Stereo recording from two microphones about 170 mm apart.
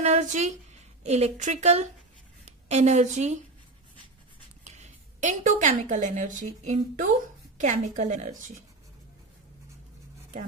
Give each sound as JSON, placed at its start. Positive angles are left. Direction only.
{"t": 0.0, "sound": "a woman's voice", "side_deg": -45}
{"t": 4.6, "sound": "a woman's voice", "side_deg": -45}